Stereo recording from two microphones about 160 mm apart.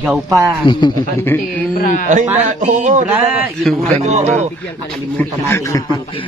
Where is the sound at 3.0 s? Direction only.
10° right (ahead or behind).